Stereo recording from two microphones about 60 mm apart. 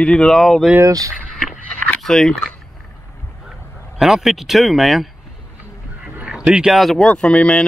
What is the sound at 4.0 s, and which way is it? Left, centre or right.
Speech, centre.